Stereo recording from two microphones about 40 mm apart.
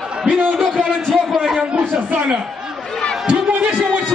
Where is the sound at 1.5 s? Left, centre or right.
Right.